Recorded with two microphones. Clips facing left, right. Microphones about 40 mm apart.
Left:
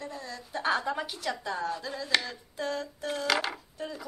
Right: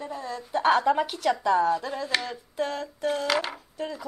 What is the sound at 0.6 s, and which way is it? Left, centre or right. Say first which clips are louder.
Speech: right 8 dB; right.